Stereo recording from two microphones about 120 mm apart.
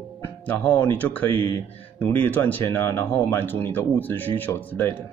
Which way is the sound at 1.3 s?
45° right (ahead or behind).